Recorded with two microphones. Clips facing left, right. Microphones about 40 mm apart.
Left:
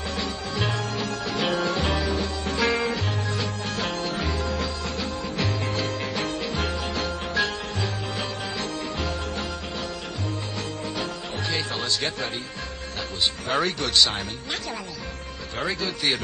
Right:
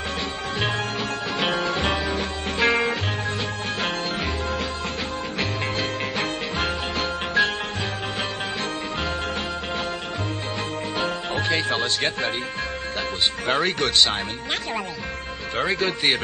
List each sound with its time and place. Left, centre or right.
0.2 s music: right
11.0 s music: right
13.5 s speech: right
15.6 s speech: right